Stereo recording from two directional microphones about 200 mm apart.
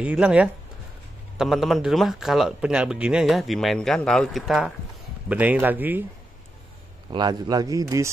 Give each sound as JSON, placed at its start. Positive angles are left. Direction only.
{"t": 0.0, "sound": "speech", "side_deg": -5}
{"t": 7.1, "sound": "speech", "side_deg": -20}